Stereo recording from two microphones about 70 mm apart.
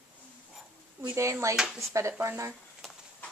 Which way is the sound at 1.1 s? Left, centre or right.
Right.